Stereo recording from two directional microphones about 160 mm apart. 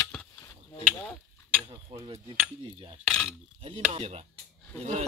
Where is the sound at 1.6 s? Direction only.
30° right (ahead or behind).